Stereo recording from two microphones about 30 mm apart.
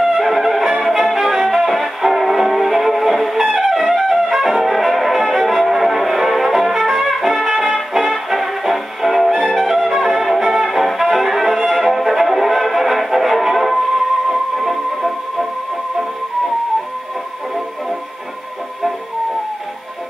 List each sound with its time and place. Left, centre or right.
0.2 s music: centre
4.0 s brass instrument: centre
7.7 s music: centre